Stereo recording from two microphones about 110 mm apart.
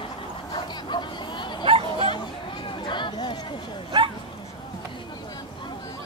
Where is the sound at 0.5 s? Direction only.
45° left (ahead or behind).